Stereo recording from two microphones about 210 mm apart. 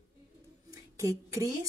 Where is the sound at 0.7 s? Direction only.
15° right (ahead or behind).